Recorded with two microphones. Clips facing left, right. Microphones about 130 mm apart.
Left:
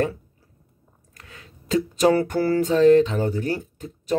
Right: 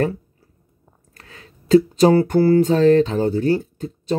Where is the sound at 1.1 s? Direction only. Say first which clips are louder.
Right 2 dB; 30° right (ahead or behind).